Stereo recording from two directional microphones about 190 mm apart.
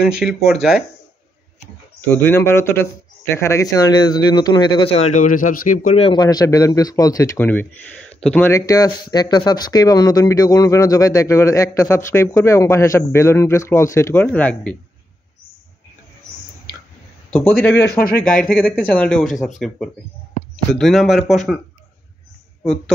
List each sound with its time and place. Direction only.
0.0 s speech: 5° right (ahead or behind)
2.0 s speech: 10° left (ahead or behind); by 5.9 s 45° left (ahead or behind)
5.9 s speech: 25° left (ahead or behind); by 14.8 s 5° left (ahead or behind)
17.3 s speech: 10° left (ahead or behind)
20.7 s speech: centre (ahead or behind)